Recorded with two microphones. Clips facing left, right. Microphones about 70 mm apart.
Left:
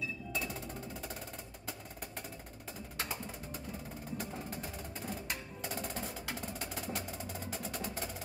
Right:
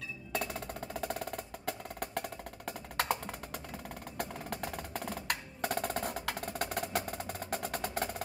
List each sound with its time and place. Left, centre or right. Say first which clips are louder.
0.3 s music: right 7 dB; right
4.2 s percussion: right 8 dB; right